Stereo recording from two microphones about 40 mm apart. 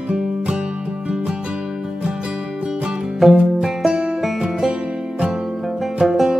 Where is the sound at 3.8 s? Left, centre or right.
Centre.